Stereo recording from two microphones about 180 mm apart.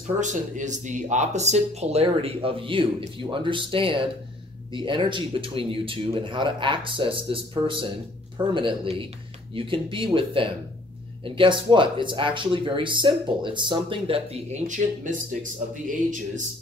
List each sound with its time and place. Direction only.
0.2 s speech: 45° right (ahead or behind)